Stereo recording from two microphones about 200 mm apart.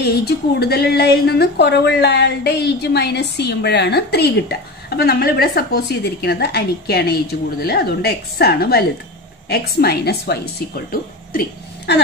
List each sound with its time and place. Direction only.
0.0 s a woman's voice: 50° left (ahead or behind)